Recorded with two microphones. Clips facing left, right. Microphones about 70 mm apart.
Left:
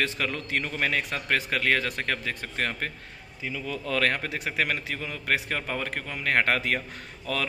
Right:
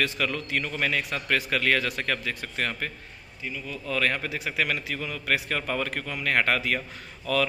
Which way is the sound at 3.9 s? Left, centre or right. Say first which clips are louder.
Even; left.